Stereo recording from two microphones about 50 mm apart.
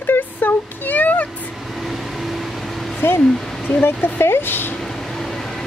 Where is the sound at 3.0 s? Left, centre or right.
Left.